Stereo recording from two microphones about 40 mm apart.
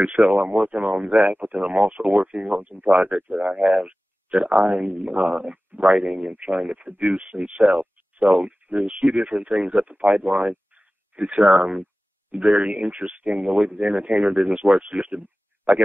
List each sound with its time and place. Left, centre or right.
0.0 s speech: right